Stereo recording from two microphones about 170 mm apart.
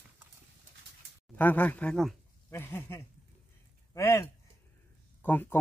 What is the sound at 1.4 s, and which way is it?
Speech, 10° left (ahead or behind).